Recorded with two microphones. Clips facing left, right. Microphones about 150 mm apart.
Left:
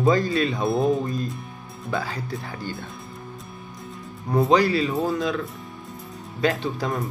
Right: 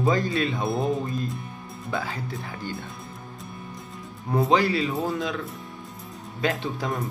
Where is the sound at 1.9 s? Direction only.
20° right (ahead or behind).